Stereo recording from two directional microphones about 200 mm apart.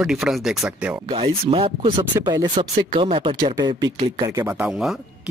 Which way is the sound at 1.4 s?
25° right (ahead or behind).